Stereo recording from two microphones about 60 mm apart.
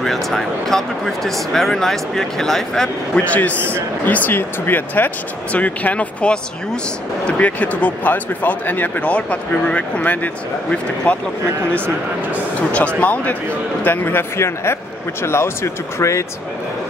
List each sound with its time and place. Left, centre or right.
0.0 s speech: centre
3.2 s speech: left
4.0 s speech: left
12.7 s speech: left
13.8 s speech: left